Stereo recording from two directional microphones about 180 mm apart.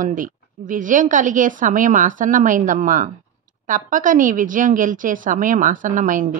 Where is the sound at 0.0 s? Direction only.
45° right (ahead or behind).